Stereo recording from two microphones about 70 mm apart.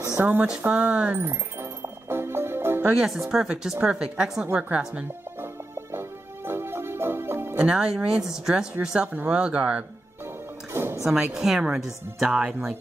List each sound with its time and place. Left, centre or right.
0.2 s speech: right
0.7 s a woman's voice: centre
1.1 s music: right
2.9 s a woman's voice: centre
5.4 s music: right
7.5 s a woman's voice: centre
10.7 s music: right
11.3 s a woman's voice: centre